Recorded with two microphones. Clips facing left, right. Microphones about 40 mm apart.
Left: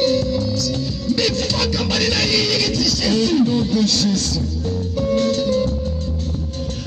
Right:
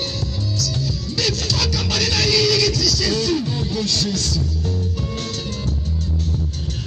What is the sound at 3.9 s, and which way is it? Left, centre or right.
Music, left.